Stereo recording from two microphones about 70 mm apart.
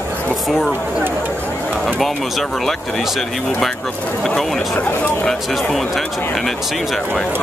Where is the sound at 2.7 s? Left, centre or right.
Centre.